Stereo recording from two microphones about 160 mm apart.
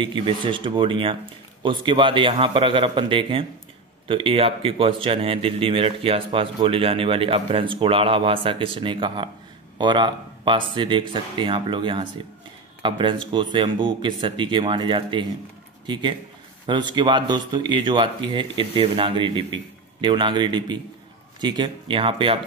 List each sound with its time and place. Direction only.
0.0 s speech: 30° right (ahead or behind)